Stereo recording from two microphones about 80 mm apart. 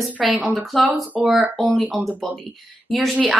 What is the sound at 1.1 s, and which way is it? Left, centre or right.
Speech, centre.